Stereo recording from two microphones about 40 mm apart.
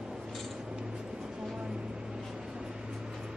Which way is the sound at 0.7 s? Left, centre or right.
Right.